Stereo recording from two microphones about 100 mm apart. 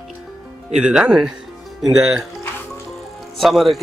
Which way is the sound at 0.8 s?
5° right (ahead or behind).